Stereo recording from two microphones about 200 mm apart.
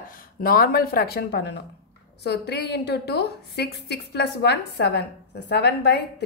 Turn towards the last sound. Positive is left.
turn(degrees=55)  # may be behind; listen again after turning